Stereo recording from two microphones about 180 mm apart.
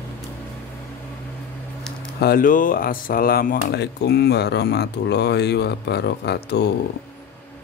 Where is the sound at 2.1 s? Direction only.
55° left (ahead or behind).